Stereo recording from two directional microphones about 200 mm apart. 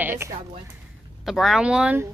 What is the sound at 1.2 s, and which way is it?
Speech, centre (ahead or behind).